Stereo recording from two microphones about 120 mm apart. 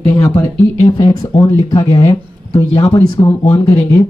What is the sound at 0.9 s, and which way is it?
Speech, 35° left (ahead or behind).